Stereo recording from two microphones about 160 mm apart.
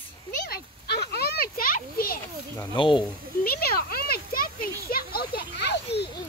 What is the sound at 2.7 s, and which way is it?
Speech, 30° left (ahead or behind).